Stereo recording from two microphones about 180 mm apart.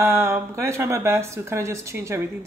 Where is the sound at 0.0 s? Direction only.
15° right (ahead or behind).